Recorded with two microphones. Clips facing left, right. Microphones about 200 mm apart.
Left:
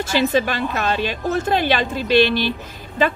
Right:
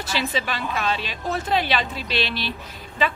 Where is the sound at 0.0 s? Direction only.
50° left (ahead or behind).